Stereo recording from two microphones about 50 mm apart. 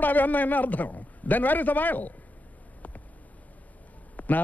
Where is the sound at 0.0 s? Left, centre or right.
Left.